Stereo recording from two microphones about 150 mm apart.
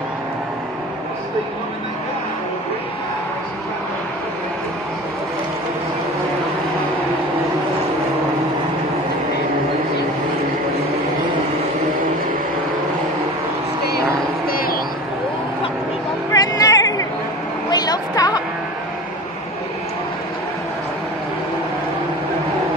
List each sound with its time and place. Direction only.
14.5 s vehicle: 80° left
16.3 s music: 25° left (ahead or behind)
17.6 s a sound: 25° left (ahead or behind)